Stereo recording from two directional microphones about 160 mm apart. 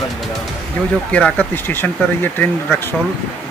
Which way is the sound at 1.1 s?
10° left (ahead or behind).